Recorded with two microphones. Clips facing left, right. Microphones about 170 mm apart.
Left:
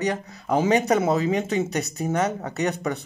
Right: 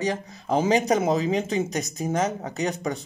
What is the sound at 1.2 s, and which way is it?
Speech, 35° right (ahead or behind).